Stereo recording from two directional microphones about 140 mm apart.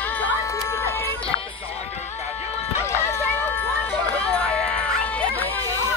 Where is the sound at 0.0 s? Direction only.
10° left (ahead or behind).